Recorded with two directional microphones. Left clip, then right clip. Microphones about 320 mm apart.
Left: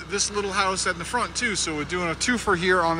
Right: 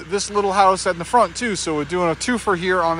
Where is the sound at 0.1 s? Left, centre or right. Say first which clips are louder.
Right 6 dB; centre.